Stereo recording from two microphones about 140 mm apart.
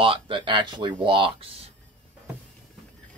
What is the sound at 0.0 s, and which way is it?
Speech, 35° right (ahead or behind).